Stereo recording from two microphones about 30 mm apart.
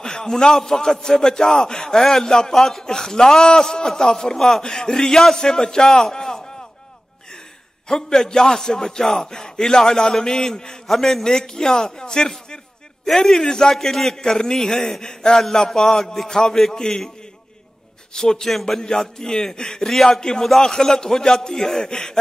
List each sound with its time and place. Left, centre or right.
0.0 s a sound: left
0.3 s a man's voice: centre
4.4 s a man's voice: centre
7.9 s a man's voice: centre
13.0 s a man's voice: centre
13.4 s a man's voice: left
13.7 s a man's voice: centre
18.1 s a man's voice: centre
19.8 s a man's voice: centre
20.1 s a man's voice: left